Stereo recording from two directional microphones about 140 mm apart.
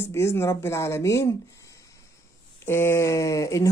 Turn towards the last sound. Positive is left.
turn(degrees=20)  # may be behind; listen again after turning